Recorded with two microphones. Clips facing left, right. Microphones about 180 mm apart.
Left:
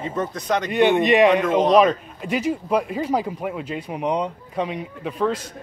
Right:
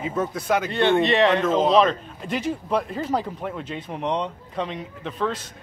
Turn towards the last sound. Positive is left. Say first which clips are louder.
# left 4 dB
turn(degrees=10)  # may be behind; listen again after turning